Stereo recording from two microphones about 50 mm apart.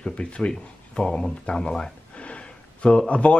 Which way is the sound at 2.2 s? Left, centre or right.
Left.